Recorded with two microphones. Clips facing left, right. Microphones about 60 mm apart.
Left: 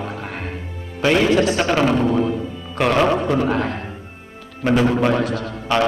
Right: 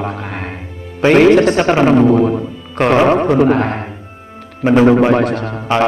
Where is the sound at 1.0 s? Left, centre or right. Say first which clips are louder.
Right 7 dB; right.